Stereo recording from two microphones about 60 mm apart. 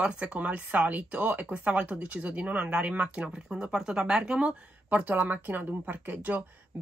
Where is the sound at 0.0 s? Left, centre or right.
Centre.